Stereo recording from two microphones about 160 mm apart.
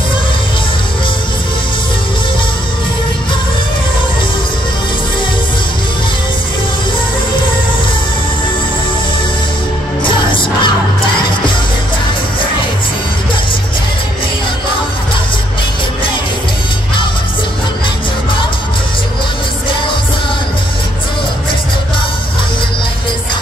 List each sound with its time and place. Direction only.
10.0 s music: 30° left (ahead or behind)